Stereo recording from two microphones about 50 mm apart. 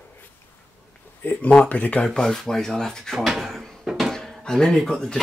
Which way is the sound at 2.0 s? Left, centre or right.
Centre.